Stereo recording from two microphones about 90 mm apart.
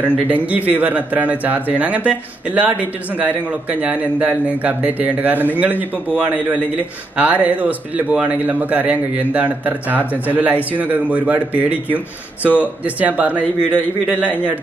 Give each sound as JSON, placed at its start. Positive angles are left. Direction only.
{"t": 0.3, "sound": "a man's voice", "side_deg": -15}